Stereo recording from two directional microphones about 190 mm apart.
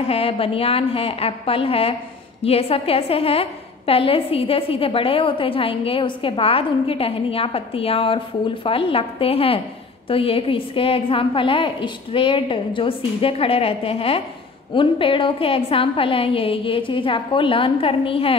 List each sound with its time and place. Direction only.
0.0 s a woman's voice: 30° left (ahead or behind)